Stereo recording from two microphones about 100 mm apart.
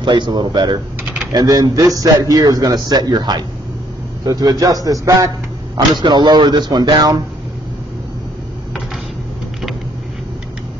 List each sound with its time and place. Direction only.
0.0 s a man's voice: 50° right (ahead or behind)
5.8 s speech: 50° right (ahead or behind)